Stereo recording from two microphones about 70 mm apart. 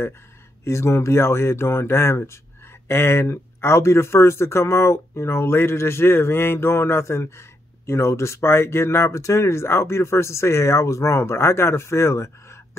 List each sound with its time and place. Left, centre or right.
0.7 s speech: left